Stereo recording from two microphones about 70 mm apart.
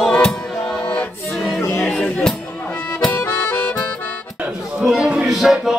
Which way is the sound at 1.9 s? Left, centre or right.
Centre.